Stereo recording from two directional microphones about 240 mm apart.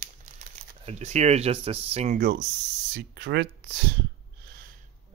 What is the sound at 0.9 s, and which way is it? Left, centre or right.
Speech, right.